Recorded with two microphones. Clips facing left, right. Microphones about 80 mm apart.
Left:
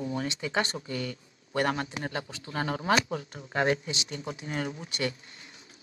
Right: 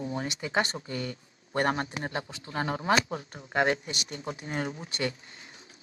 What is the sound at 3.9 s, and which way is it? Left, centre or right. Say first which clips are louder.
Speech: left 1 dB; right.